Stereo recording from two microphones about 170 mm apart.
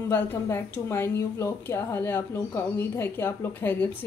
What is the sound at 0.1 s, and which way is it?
A woman's voice, 15° left (ahead or behind).